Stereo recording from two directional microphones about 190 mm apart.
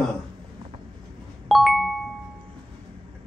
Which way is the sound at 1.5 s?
Centre (ahead or behind).